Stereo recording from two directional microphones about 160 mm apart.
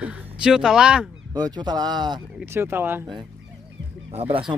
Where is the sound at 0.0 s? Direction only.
5° right (ahead or behind).